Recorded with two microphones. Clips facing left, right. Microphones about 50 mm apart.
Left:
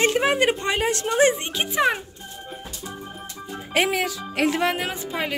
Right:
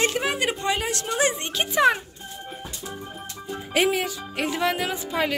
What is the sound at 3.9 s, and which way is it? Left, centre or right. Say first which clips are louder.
Speech: left 1 dB; left.